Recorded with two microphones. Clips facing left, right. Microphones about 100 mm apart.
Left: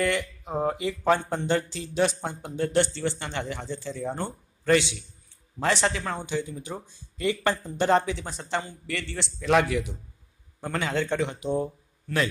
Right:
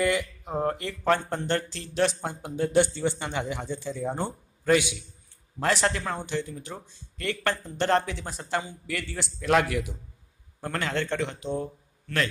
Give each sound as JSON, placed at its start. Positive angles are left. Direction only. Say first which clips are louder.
{"t": 0.0, "sound": "speech", "louder": "right 1 dB", "side_deg": -5}
{"t": 0.6, "sound": "a man's voice", "louder": "left 2 dB", "side_deg": 5}